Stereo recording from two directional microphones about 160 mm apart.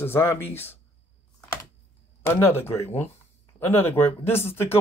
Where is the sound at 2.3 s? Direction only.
15° left (ahead or behind).